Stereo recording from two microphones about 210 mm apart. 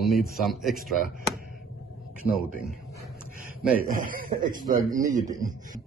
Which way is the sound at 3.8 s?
40° right (ahead or behind).